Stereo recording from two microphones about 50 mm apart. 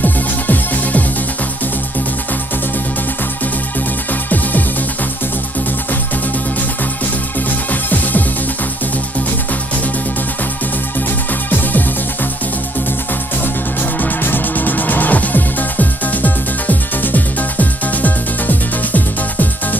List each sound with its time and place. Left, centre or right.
0.0 s music: left
4.3 s music: left
14.2 s music: left